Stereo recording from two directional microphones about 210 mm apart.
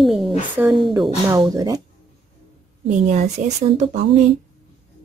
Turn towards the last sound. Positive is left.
turn(degrees=-35)  # may be behind; listen again after turning